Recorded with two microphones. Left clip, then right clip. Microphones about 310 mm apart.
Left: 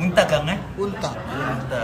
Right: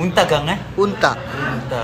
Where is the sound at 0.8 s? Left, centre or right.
Centre.